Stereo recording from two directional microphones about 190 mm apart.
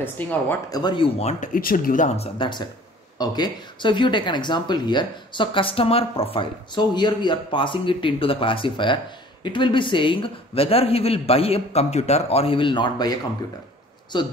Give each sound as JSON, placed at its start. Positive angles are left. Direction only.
{"t": 0.0, "sound": "speech", "side_deg": 10}